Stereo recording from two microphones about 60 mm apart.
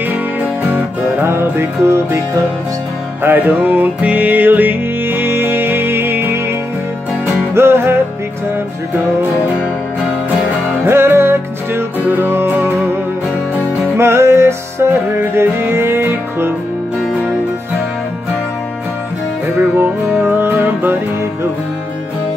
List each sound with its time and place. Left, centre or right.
0.1 s music: right
1.2 s music: right
3.2 s music: right
7.5 s music: right
10.9 s music: right
13.9 s music: right
20.2 s music: right